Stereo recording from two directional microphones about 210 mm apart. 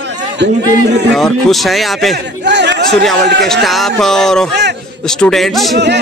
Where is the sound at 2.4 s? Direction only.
55° right (ahead or behind).